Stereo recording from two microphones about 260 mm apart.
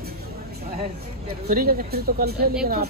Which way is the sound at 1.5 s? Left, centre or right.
Right.